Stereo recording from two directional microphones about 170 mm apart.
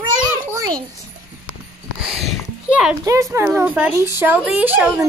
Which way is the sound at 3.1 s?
20° right (ahead or behind).